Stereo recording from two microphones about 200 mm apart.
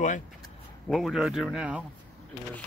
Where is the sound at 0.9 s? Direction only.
Centre (ahead or behind).